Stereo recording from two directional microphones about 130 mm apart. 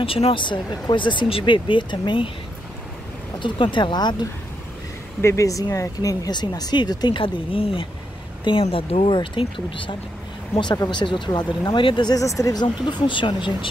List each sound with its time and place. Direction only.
0.0 s speech: 45° left (ahead or behind)
3.3 s speech: 40° left (ahead or behind)
5.2 s speech: 25° left (ahead or behind); by 13.7 s 40° left (ahead or behind)